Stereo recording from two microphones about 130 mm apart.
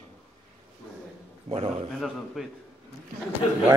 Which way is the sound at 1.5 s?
50° right (ahead or behind).